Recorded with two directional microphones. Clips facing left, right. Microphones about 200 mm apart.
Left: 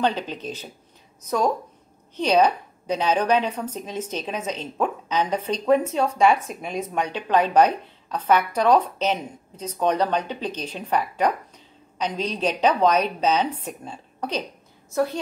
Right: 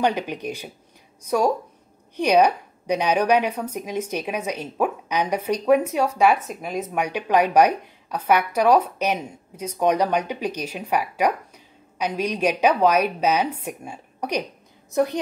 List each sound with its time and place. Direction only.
0.0 s a woman's voice: 15° right (ahead or behind)
2.1 s a woman's voice: 10° right (ahead or behind)